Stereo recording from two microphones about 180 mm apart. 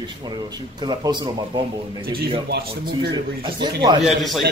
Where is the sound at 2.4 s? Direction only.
65° right (ahead or behind).